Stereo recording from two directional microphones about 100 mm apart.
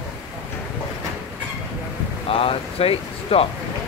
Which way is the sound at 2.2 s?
70° left (ahead or behind).